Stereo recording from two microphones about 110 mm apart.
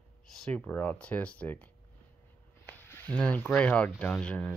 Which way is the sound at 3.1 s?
15° left (ahead or behind).